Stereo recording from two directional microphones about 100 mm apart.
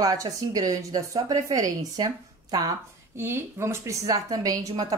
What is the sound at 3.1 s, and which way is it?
Speech, 25° right (ahead or behind).